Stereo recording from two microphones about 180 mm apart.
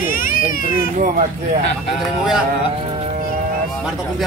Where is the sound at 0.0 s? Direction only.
50° left (ahead or behind).